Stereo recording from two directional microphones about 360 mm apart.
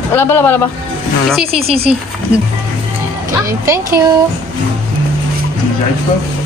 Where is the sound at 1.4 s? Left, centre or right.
Centre.